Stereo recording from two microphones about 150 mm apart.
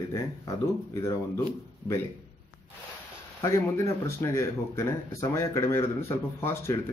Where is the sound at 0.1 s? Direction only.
20° left (ahead or behind).